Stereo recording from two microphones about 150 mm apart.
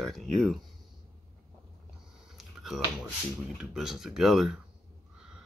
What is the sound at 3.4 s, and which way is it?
Speech, 5° right (ahead or behind).